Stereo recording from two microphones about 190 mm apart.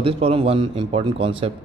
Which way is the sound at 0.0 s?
30° right (ahead or behind).